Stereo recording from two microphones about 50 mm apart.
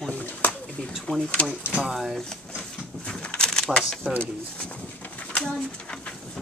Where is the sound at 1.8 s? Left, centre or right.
Centre.